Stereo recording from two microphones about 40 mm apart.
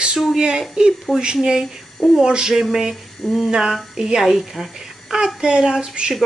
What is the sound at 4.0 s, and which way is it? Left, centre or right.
Speech, centre.